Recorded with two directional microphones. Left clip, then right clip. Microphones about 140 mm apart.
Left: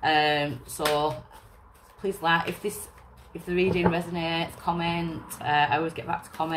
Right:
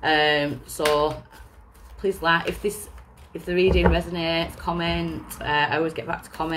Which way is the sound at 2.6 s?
15° left (ahead or behind).